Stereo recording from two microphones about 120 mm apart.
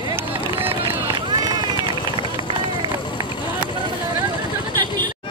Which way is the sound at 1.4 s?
35° right (ahead or behind).